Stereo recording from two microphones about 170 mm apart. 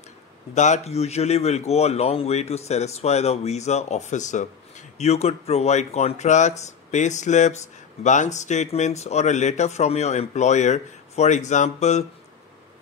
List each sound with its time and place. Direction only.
0.6 s a man's voice: 40° left (ahead or behind)